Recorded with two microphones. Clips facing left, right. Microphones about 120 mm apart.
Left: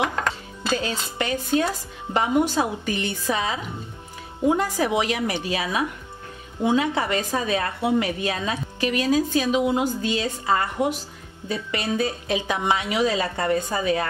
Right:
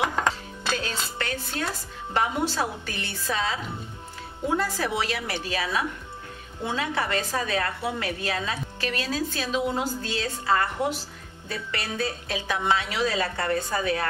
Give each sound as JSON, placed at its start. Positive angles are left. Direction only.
{"t": 1.1, "sound": "a woman's voice", "side_deg": 15}